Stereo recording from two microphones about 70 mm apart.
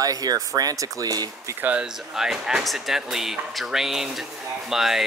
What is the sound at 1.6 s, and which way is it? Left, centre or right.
Speech, right.